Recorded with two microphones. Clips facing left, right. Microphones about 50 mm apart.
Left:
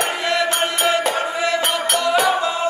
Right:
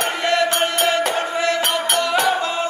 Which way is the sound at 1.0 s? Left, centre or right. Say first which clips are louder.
Even; centre.